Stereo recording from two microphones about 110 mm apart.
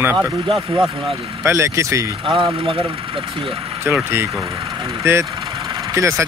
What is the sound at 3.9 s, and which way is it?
Speech, 20° right (ahead or behind).